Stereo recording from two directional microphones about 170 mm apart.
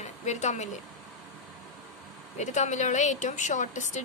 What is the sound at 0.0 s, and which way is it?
Speech, 45° left (ahead or behind).